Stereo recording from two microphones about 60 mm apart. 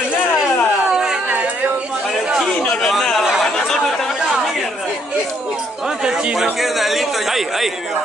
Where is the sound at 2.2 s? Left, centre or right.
Centre.